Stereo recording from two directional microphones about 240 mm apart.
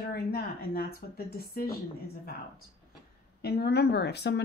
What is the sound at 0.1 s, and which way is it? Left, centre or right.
Speech, left.